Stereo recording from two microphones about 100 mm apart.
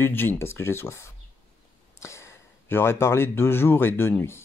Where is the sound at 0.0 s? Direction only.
20° left (ahead or behind).